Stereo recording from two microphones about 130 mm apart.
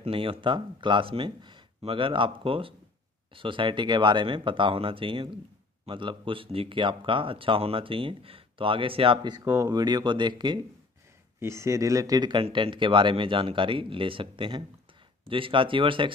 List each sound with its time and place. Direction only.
0.0 s speech: 45° right (ahead or behind)
9.4 s speech: 25° right (ahead or behind)
11.3 s speech: 20° right (ahead or behind); by 16.1 s 40° right (ahead or behind)